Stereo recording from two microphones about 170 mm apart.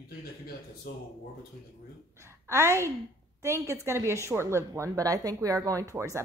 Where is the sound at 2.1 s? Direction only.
15° right (ahead or behind).